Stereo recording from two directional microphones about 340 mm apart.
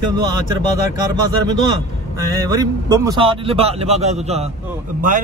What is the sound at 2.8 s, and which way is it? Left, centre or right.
A man's voice, centre.